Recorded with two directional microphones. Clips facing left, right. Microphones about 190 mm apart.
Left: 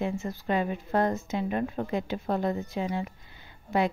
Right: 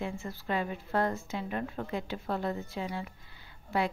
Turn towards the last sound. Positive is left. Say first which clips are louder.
# left 4 dB
turn(degrees=20)  # may be behind; listen again after turning